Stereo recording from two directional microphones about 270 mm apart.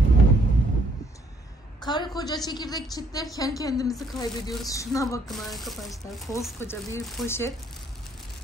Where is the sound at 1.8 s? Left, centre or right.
Centre.